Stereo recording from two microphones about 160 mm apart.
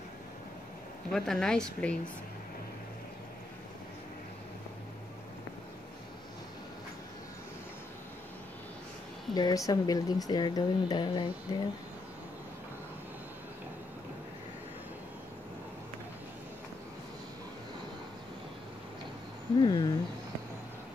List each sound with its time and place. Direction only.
1.1 s a woman's voice: 5° left (ahead or behind)
9.3 s speech: 25° left (ahead or behind)
19.6 s speech: 25° left (ahead or behind)